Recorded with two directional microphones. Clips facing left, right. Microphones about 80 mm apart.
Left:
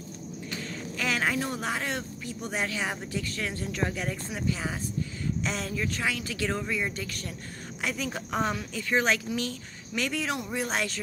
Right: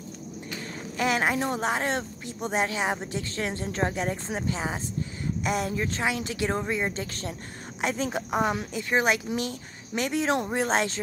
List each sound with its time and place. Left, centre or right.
0.9 s a woman's voice: right
5.7 s a woman's voice: right
8.3 s a woman's voice: centre
10.3 s speech: right